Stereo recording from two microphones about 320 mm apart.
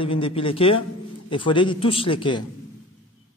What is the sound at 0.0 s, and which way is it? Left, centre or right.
A man's voice, centre.